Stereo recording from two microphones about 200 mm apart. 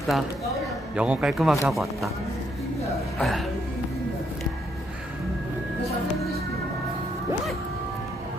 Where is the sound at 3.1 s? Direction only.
Centre (ahead or behind).